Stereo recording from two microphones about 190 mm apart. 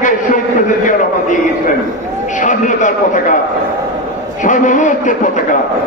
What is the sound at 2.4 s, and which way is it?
Speech, 40° left (ahead or behind).